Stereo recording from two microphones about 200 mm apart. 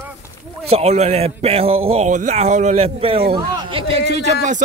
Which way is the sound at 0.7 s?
30° right (ahead or behind).